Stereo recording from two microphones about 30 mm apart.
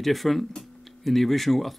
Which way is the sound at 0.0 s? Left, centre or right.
Centre.